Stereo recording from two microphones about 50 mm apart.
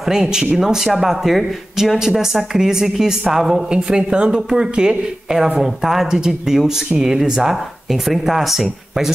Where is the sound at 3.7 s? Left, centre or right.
Centre.